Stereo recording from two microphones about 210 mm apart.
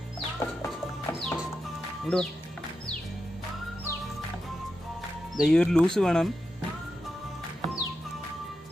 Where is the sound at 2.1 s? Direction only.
5° left (ahead or behind).